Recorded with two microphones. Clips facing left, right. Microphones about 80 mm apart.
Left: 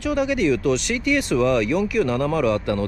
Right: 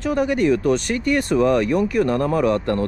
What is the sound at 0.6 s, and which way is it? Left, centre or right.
Speech, left.